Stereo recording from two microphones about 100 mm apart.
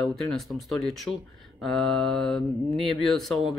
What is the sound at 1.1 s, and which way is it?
Speech, 20° left (ahead or behind).